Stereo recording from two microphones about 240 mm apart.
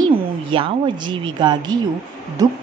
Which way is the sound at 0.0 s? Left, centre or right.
Right.